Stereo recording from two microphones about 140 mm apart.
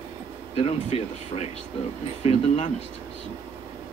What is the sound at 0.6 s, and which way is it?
Speech, 50° left (ahead or behind).